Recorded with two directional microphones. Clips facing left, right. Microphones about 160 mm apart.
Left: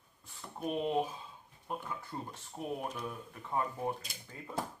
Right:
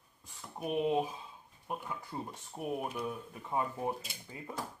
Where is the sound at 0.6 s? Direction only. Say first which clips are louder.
Right 2 dB; 10° right (ahead or behind).